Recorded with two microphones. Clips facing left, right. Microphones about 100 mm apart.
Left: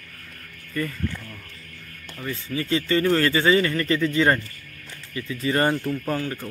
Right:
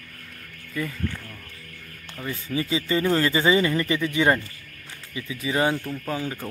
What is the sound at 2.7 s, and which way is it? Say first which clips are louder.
A man's voice: left 3 dB; 5° right (ahead or behind).